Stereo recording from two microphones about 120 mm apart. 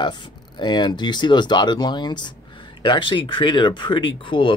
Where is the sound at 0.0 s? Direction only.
40° left (ahead or behind).